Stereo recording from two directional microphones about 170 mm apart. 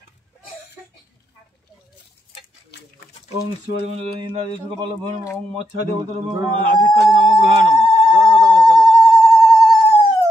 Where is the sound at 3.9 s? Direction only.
35° right (ahead or behind).